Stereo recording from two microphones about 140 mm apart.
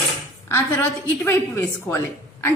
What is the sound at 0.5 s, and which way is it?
A woman's voice, 15° left (ahead or behind).